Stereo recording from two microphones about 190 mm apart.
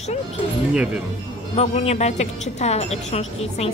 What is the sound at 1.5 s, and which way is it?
Speech, 35° left (ahead or behind).